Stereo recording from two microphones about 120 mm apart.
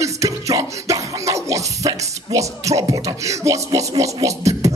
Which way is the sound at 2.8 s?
30° right (ahead or behind).